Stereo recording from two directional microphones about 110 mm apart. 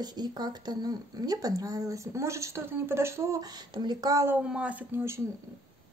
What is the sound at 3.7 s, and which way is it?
Speech, 40° right (ahead or behind).